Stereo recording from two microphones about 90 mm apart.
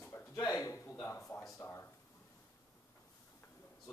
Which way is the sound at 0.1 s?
30° left (ahead or behind).